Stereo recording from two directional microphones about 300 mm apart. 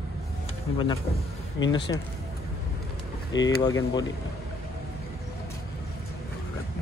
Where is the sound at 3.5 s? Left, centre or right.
Centre.